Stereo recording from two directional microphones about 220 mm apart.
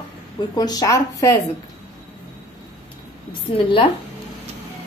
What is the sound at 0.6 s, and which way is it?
Speech, 15° left (ahead or behind).